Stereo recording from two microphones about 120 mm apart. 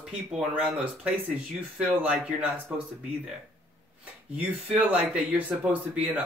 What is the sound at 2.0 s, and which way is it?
Speech, 10° right (ahead or behind).